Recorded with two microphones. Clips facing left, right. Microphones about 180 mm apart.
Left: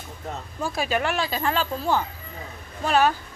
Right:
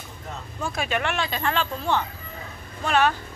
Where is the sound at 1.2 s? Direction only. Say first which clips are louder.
Left 1 dB; 5° left (ahead or behind).